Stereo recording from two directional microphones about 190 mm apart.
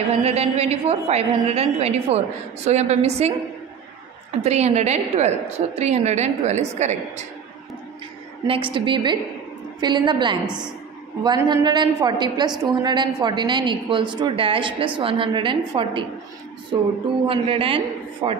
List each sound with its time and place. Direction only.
0.2 s a woman's voice: 35° right (ahead or behind)
4.4 s a woman's voice: 35° right (ahead or behind)
8.5 s a woman's voice: 25° right (ahead or behind)
10.4 s a woman's voice: 5° right (ahead or behind)
11.2 s a woman's voice: 20° right (ahead or behind)
17.3 s a woman's voice: 30° right (ahead or behind)